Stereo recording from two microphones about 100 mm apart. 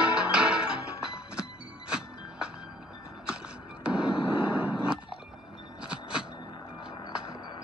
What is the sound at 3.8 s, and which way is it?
Fireworks, 10° right (ahead or behind).